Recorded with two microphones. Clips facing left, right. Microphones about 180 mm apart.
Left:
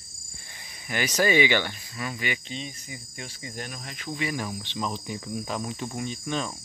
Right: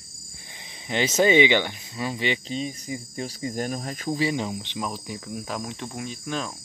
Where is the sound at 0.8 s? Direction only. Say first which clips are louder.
Right 4 dB; 25° right (ahead or behind); by 4.3 s 40° right (ahead or behind).